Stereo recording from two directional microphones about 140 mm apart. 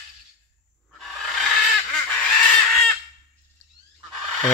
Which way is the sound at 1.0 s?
Centre (ahead or behind).